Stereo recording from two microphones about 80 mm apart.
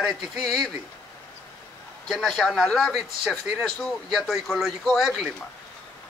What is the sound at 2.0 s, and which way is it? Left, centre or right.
Speech, centre.